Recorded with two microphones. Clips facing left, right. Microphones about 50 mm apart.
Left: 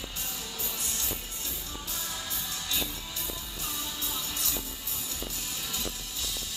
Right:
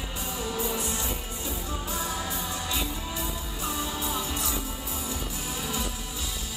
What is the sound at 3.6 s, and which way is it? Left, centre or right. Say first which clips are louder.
Music: right 9 dB; centre.